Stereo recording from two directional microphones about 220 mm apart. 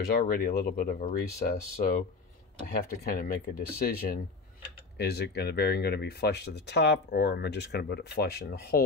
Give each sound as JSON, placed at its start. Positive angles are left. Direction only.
{"t": 0.3, "sound": "speech", "side_deg": 40}